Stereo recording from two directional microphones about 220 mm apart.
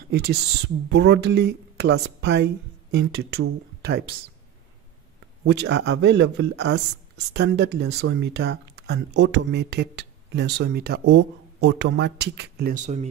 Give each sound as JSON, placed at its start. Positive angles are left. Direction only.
{"t": 0.1, "sound": "speech", "side_deg": -45}
{"t": 5.4, "sound": "speech", "side_deg": -50}